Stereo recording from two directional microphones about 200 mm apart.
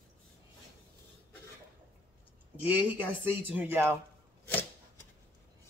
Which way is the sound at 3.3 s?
10° right (ahead or behind).